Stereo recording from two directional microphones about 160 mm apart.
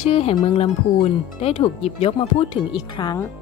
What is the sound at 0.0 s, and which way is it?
Speech, 40° left (ahead or behind).